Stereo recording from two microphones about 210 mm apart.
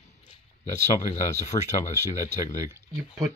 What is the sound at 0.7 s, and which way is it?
Speech, 35° left (ahead or behind).